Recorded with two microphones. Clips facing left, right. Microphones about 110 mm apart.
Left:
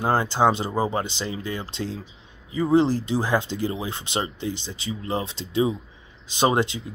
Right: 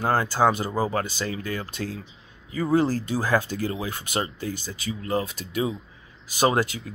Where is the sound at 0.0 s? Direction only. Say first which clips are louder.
Left 1 dB; 20° left (ahead or behind).